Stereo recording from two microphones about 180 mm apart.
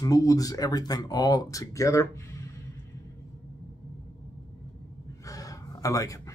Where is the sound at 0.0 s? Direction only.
20° left (ahead or behind).